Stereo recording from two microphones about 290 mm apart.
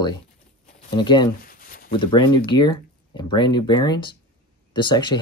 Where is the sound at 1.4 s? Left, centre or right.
Left.